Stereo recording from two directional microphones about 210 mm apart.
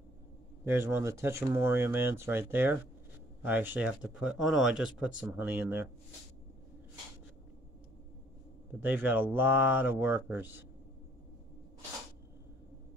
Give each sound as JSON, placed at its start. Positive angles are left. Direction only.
{"t": 0.7, "sound": "speech", "side_deg": -10}
{"t": 8.8, "sound": "speech", "side_deg": -10}